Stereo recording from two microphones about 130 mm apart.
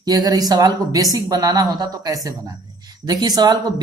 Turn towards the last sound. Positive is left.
turn(degrees=-30)  # may be behind; listen again after turning